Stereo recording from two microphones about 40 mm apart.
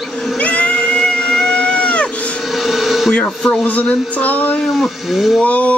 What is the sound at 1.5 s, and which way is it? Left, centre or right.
Goat, left.